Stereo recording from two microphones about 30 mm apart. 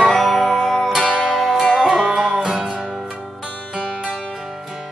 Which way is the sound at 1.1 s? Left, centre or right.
Right.